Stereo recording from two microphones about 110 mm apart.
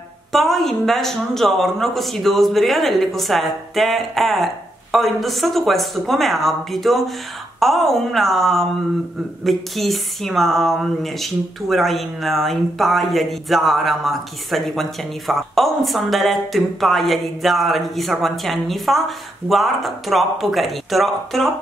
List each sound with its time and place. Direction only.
0.3 s a woman's voice: centre (ahead or behind)